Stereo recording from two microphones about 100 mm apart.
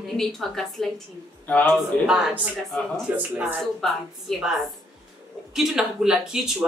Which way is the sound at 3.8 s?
Centre (ahead or behind).